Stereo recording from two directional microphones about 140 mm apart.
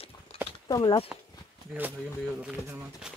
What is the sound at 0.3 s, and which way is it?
Clip-clop, 45° left (ahead or behind).